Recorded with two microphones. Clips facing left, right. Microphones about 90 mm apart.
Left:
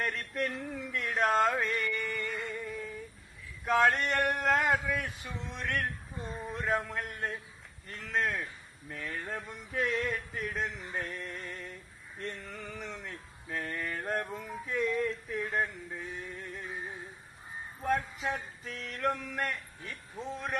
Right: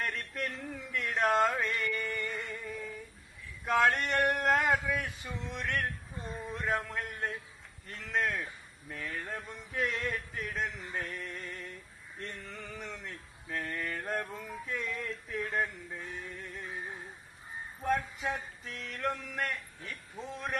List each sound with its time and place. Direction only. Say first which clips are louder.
0.0 s a sound: left 3 dB; centre (ahead or behind)
1.8 s music: even; centre (ahead or behind)
6.2 s speech: left 1 dB; centre (ahead or behind)
7.9 s music: even; centre (ahead or behind)
18.2 s music: left 1 dB; 5° left (ahead or behind)